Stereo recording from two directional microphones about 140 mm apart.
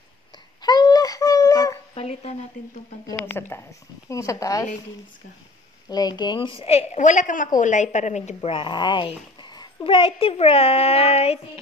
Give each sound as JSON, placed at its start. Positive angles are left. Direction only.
{"t": 0.6, "sound": "a sound", "side_deg": 30}
{"t": 2.0, "sound": "a sound", "side_deg": 45}
{"t": 2.6, "sound": "a woman's voice", "side_deg": 65}
{"t": 3.2, "sound": "speech", "side_deg": 15}
{"t": 5.9, "sound": "a child's voice", "side_deg": 30}
{"t": 8.4, "sound": "a child's voice", "side_deg": 35}